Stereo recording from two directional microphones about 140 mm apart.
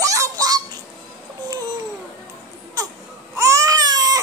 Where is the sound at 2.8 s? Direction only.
25° right (ahead or behind).